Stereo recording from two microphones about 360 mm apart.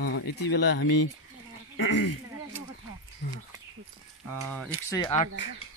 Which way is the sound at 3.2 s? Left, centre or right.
Left.